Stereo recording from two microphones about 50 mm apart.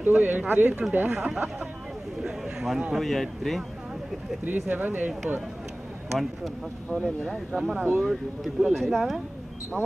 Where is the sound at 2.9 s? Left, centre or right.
Centre.